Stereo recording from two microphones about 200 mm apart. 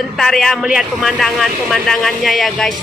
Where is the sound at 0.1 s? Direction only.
Centre (ahead or behind).